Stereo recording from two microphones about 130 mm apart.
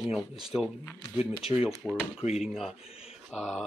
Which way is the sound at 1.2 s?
50° left (ahead or behind).